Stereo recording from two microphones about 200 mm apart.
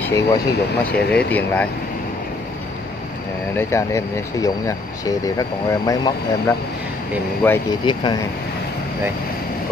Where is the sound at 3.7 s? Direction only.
15° left (ahead or behind).